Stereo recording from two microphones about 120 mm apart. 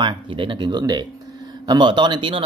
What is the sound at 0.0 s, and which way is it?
Speech, 40° right (ahead or behind).